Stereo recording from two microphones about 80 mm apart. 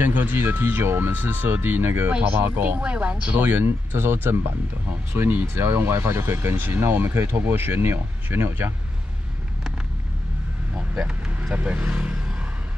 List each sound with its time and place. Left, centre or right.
0.0 s speech: right
10.7 s speech: centre